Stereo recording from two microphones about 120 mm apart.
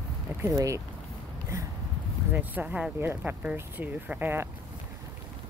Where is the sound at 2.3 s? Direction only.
10° right (ahead or behind).